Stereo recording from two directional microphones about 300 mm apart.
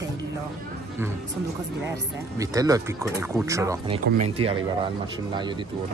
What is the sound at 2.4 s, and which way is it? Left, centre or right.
Speech, centre.